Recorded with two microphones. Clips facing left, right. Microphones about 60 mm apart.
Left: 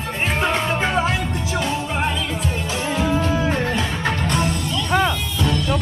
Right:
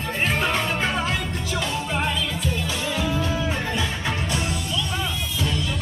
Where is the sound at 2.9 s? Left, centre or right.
Left.